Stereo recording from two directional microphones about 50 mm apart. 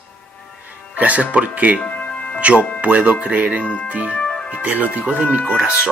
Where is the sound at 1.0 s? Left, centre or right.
Right.